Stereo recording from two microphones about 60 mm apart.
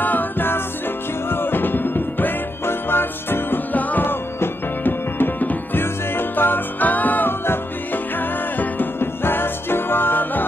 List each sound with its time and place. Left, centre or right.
0.0 s music: left